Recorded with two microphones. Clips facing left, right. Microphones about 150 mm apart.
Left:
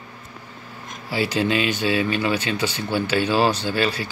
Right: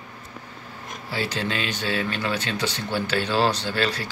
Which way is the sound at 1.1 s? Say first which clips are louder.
Left 6 dB; 10° left (ahead or behind).